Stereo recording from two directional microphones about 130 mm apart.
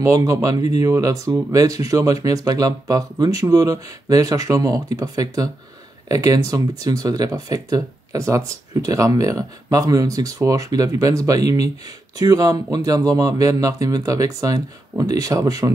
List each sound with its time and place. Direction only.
0.0 s speech: 25° right (ahead or behind)